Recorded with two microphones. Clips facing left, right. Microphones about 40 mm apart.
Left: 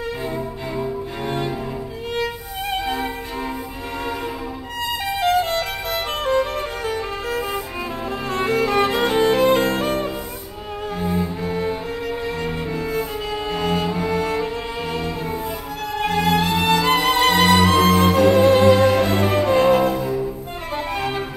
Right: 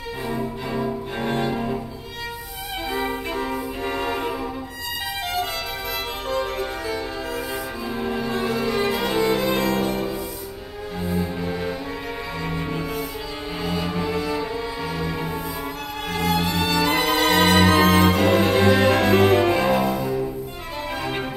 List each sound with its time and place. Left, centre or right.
5.2 s music: left
8.3 s music: left
13.6 s cello: left
16.0 s music: left
17.1 s music: right
19.6 s music: left
20.0 s music: centre